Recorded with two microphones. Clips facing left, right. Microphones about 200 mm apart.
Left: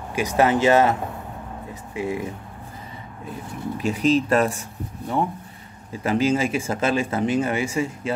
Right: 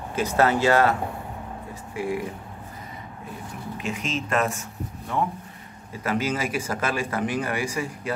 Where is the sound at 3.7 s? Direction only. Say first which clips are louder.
Left 10 dB; 35° left (ahead or behind).